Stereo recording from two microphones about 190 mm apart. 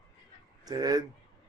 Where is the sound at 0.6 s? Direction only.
20° right (ahead or behind).